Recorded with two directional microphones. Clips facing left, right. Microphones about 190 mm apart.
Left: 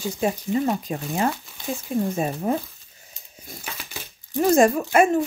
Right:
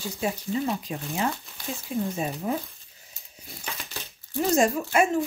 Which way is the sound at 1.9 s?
50° left (ahead or behind).